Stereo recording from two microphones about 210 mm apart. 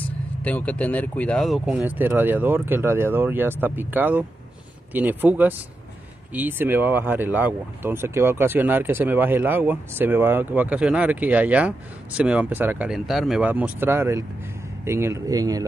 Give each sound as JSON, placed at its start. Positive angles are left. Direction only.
{"t": 0.4, "sound": "speech", "side_deg": 5}